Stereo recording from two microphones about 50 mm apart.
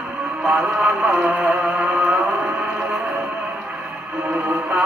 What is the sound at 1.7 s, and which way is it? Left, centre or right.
Music, right.